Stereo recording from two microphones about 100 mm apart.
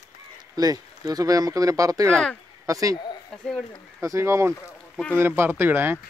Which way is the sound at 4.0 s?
30° right (ahead or behind).